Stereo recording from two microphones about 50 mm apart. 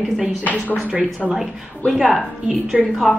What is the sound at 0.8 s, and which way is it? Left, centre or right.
Speech, right.